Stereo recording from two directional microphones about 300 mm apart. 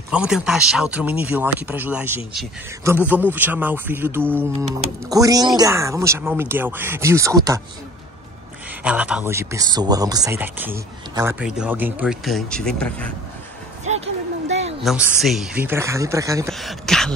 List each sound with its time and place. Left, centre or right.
0.1 s speech: centre
8.8 s speech: centre
13.8 s a sound: right
14.9 s speech: centre
16.4 s speech: centre